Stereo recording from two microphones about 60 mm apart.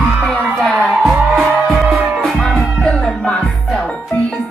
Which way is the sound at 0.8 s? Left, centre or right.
Centre.